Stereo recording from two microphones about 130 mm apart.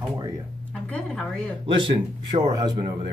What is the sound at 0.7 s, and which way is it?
Speech, 10° left (ahead or behind).